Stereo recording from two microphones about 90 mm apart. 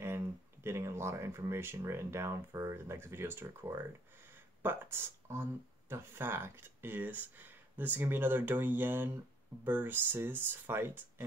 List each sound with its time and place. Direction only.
0.0 s speech: 30° right (ahead or behind)